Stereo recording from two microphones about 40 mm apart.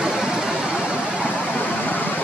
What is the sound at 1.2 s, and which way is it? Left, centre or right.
Vehicle, left.